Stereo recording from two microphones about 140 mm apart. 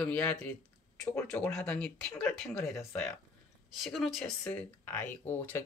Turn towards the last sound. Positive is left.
turn(degrees=15)  # may be behind; listen again after turning